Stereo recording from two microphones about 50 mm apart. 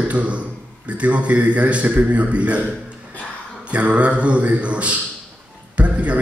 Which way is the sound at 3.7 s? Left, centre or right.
Right.